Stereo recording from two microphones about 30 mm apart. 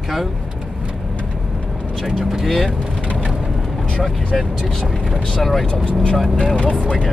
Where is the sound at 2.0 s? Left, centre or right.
Centre.